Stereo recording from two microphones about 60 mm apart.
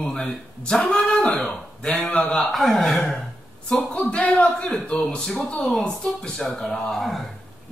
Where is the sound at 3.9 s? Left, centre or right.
Left; by 7.2 s centre.